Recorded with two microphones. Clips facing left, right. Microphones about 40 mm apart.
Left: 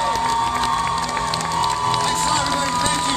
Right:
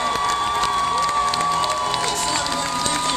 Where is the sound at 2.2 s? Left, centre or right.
Left.